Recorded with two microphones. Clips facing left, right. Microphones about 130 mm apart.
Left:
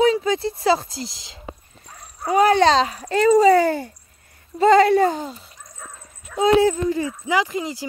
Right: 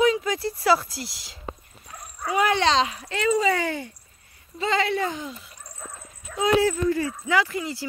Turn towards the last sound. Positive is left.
turn(degrees=20)  # may be behind; listen again after turning